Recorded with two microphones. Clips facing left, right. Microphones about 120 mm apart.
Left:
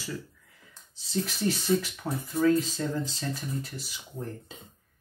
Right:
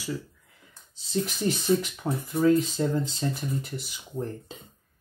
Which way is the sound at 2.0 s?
20° right (ahead or behind).